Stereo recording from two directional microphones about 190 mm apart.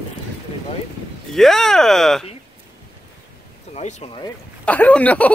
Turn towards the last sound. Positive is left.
turn(degrees=5)  # may be behind; listen again after turning